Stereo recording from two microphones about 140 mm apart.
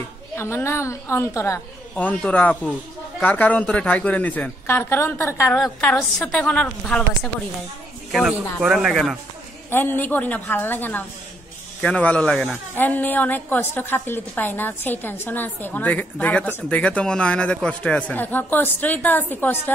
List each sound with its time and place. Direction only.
0.4 s a woman's voice: 20° left (ahead or behind)
5.8 s a woman's voice: 5° left (ahead or behind)
8.1 s speech: 5° right (ahead or behind)
9.7 s a woman's voice: 15° left (ahead or behind)